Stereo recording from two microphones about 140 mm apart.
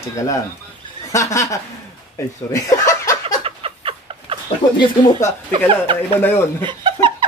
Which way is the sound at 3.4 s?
40° right (ahead or behind).